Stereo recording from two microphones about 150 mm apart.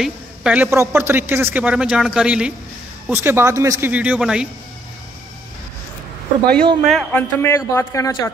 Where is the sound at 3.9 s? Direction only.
10° right (ahead or behind).